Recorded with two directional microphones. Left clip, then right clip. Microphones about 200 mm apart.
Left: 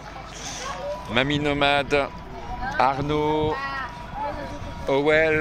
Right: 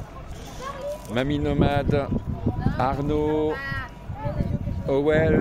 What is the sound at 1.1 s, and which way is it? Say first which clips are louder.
Speech: left 3 dB; 15° right (ahead or behind).